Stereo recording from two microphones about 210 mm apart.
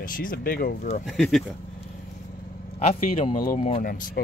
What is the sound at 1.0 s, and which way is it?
Speech, centre (ahead or behind).